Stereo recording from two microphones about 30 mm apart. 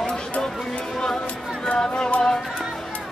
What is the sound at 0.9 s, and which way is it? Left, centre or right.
Music, left.